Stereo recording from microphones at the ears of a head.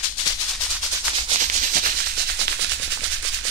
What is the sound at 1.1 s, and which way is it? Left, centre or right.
Maraca, right.